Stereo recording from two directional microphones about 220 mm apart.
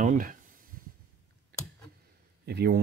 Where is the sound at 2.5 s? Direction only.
45° right (ahead or behind).